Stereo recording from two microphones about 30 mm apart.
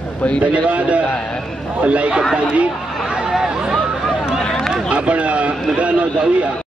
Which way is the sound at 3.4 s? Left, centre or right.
Right.